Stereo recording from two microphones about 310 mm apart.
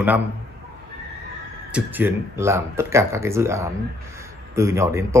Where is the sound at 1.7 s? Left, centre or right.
Centre.